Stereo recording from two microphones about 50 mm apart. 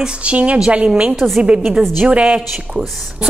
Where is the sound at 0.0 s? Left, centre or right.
Right.